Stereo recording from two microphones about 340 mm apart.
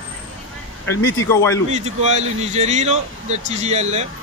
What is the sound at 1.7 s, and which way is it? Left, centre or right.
Speech, centre.